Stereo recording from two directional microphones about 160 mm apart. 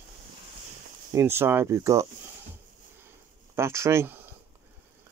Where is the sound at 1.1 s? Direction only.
15° right (ahead or behind).